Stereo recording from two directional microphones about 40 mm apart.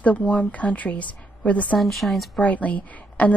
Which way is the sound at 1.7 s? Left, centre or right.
Centre.